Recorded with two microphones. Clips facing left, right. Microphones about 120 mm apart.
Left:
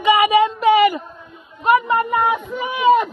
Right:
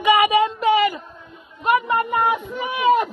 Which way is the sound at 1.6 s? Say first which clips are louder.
Left 3 dB; centre (ahead or behind).